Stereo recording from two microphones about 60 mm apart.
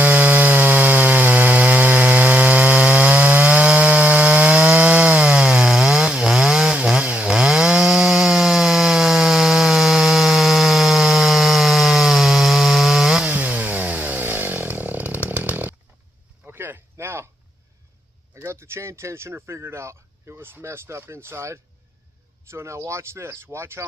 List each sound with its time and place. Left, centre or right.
0.0 s wood: right; by 13.3 s centre
13.3 s chainsaw: right
16.5 s a sound: right
18.3 s speech: right